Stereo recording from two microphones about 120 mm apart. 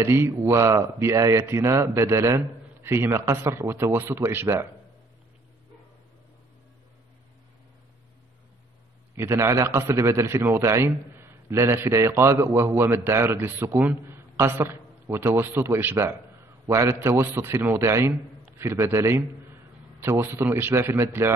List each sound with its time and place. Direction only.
0.0 s a man's voice: 20° right (ahead or behind)
9.1 s a man's voice: 20° right (ahead or behind)